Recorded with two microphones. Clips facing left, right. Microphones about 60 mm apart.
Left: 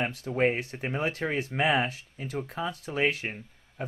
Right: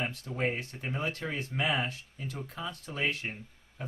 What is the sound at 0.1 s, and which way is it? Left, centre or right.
Speech, left.